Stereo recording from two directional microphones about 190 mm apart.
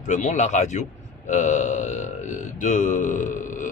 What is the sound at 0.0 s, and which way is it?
Speech, 40° left (ahead or behind).